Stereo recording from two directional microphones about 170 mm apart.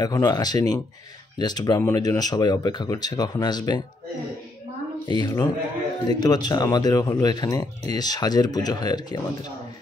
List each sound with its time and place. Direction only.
0.0 s speech: 25° left (ahead or behind)
5.0 s speech: 25° left (ahead or behind)